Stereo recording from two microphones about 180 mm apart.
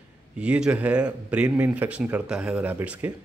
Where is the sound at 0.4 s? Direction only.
5° right (ahead or behind).